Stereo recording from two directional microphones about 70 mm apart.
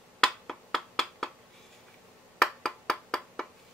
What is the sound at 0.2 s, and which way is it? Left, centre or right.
Finger snapping, centre.